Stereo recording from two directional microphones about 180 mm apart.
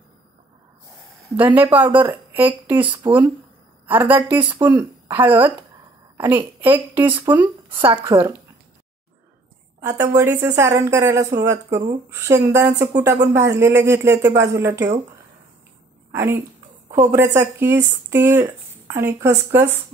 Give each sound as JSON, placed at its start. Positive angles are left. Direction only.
{"t": 1.3, "sound": "speech", "side_deg": -10}
{"t": 7.7, "sound": "a woman's voice", "side_deg": -30}
{"t": 8.0, "sound": "a woman's voice", "side_deg": -20}
{"t": 9.8, "sound": "speech", "side_deg": -15}
{"t": 16.1, "sound": "a woman's voice", "side_deg": -15}